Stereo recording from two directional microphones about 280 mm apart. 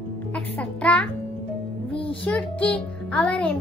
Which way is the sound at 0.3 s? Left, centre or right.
Centre.